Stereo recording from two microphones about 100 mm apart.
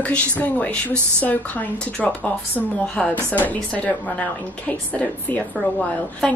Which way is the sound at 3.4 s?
15° left (ahead or behind).